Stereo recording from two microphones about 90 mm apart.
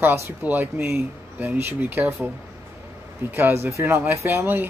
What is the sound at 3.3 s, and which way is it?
Speech, 20° right (ahead or behind).